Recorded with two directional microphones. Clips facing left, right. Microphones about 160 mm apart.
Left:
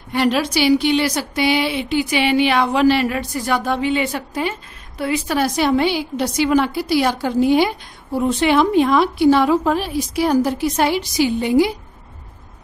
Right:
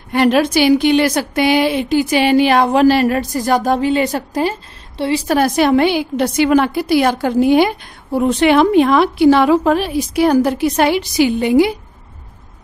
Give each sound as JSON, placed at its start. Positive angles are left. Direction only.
{"t": 0.1, "sound": "speech", "side_deg": -50}
{"t": 5.3, "sound": "a woman's voice", "side_deg": -55}